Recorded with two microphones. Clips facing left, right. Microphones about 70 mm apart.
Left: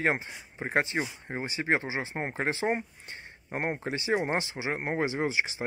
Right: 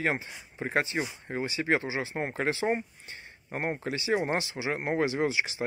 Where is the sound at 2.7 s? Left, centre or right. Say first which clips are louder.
Right 1 dB; left.